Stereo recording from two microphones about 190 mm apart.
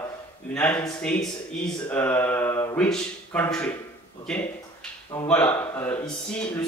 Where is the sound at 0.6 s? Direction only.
5° left (ahead or behind).